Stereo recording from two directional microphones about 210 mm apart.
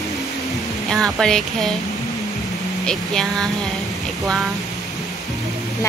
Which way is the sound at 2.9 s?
Centre (ahead or behind).